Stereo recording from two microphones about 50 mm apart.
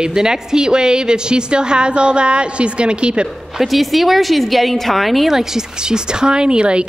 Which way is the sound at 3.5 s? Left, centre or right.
Centre.